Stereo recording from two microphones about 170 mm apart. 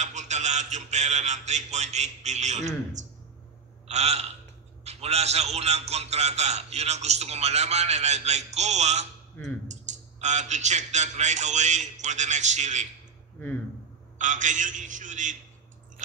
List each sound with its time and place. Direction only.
0.0 s a man's voice: 45° right (ahead or behind)
3.8 s a sound: 40° right (ahead or behind)
4.8 s a man's voice: 40° right (ahead or behind)
14.1 s a man's voice: 45° right (ahead or behind)